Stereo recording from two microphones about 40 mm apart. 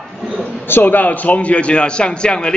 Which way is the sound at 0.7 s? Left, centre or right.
Left.